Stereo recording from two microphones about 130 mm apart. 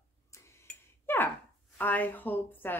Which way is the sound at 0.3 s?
20° left (ahead or behind).